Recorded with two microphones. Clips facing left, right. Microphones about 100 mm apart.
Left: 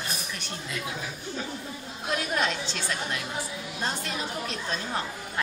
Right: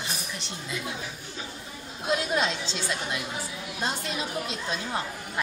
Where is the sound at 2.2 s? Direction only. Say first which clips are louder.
Right 1 dB; 20° right (ahead or behind).